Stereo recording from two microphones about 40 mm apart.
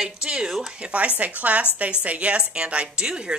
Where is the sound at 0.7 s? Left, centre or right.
Right.